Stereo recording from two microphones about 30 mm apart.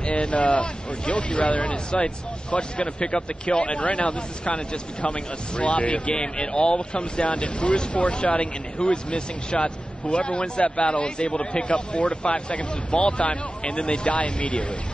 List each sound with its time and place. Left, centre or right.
0.0 s speech: left
1.9 s speech: left
3.6 s speech: left
6.1 s speech: left
8.7 s speech: left
11.6 s speech: left